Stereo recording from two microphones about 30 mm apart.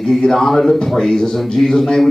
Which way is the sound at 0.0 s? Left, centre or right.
Centre.